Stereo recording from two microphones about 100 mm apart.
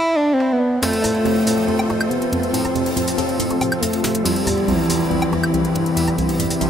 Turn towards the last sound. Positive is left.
turn(degrees=0)  # may be behind; listen again after turning